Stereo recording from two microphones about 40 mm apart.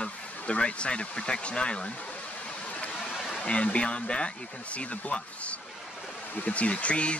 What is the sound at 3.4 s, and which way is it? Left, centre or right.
Speech, left.